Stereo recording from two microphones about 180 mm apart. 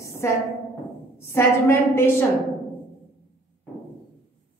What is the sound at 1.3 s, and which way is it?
Speech, 15° left (ahead or behind).